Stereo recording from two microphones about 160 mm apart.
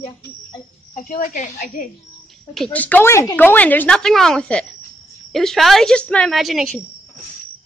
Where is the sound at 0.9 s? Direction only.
55° left (ahead or behind).